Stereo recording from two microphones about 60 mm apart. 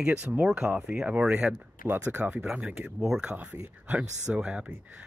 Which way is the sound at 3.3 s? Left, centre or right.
Right.